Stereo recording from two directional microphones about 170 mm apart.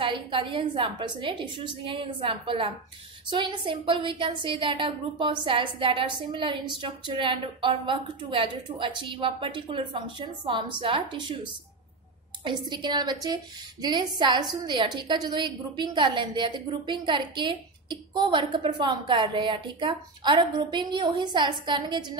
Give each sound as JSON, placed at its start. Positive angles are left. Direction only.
{"t": 0.0, "sound": "a woman's voice", "side_deg": -30}
{"t": 12.4, "sound": "a woman's voice", "side_deg": -30}